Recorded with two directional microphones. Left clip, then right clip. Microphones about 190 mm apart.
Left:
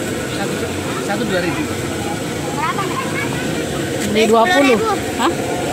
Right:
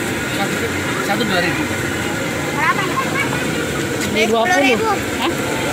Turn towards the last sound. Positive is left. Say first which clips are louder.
# left 2 dB
turn(degrees=45)  # may be behind; listen again after turning